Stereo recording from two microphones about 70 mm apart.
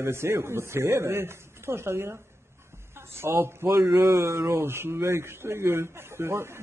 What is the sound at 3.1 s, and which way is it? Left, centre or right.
A man's voice, right.